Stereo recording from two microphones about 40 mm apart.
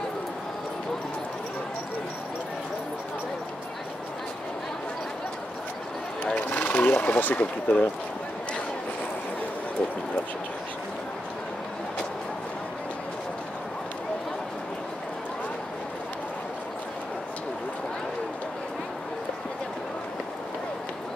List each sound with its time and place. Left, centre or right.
6.5 s speech: left